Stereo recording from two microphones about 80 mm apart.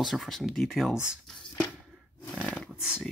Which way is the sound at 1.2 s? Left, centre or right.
Centre.